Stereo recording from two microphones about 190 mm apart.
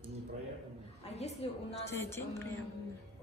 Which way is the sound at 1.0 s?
35° left (ahead or behind).